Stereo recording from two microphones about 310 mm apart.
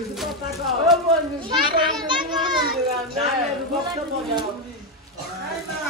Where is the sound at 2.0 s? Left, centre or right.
Centre.